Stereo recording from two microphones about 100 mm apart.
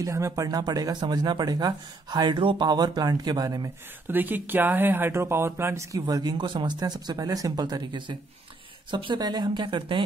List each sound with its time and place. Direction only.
0.0 s speech: 30° right (ahead or behind)
4.1 s a woman's voice: 20° right (ahead or behind); by 10.0 s 55° right (ahead or behind)